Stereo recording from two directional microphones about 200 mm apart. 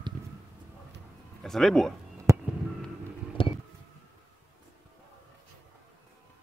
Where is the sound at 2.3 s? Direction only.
15° right (ahead or behind).